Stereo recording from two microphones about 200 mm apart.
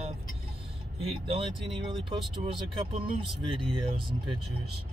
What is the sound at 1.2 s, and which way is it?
Speech, 30° right (ahead or behind).